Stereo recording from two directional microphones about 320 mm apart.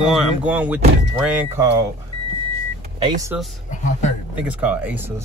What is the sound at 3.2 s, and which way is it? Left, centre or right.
Speech, centre.